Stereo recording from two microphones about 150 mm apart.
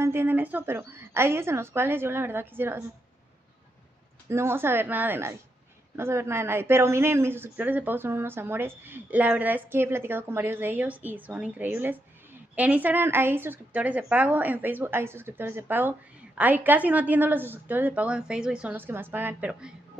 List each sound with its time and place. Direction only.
0.0 s a woman's voice: 15° right (ahead or behind)
4.3 s a woman's voice: 15° right (ahead or behind)